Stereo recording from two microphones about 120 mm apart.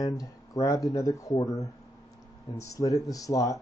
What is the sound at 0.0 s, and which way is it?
Speech, 30° left (ahead or behind).